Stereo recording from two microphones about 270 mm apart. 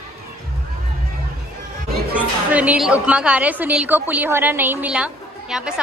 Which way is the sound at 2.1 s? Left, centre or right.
Centre.